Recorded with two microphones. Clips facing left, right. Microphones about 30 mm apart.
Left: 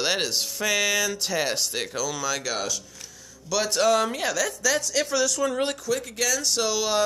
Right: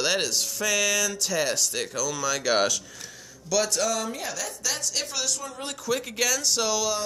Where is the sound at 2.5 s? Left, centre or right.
Centre.